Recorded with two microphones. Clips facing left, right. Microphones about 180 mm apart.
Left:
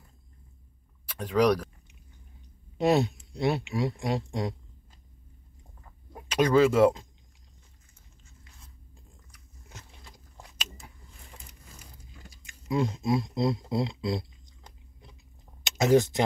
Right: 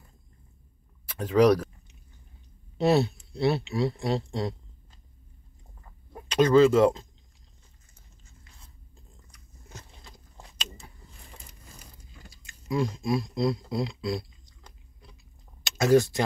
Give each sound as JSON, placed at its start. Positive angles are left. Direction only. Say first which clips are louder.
{"t": 1.2, "sound": "speech", "louder": "right 3 dB", "side_deg": -5}
{"t": 2.8, "sound": "speech", "louder": "right 1 dB", "side_deg": 15}
{"t": 6.1, "sound": "speech", "louder": "right 3 dB", "side_deg": 10}
{"t": 10.1, "sound": "a sound", "louder": "even", "side_deg": 10}
{"t": 12.3, "sound": "a sound", "louder": "even", "side_deg": 20}
{"t": 15.6, "sound": "speech", "louder": "right 1 dB", "side_deg": 20}